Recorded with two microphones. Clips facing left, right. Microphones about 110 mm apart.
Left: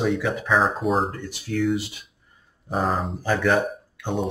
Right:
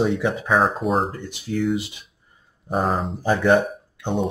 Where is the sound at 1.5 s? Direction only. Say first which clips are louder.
Right 1 dB; 20° right (ahead or behind).